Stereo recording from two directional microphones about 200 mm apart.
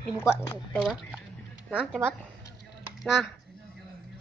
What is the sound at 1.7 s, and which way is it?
Speech, 5° right (ahead or behind).